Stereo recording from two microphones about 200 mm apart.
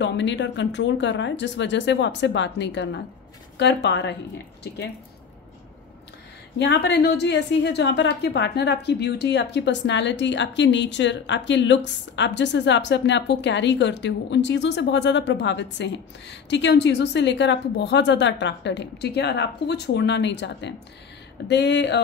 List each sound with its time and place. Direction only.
0.0 s a woman's voice: 65° left (ahead or behind)
6.6 s a woman's voice: 60° left (ahead or behind)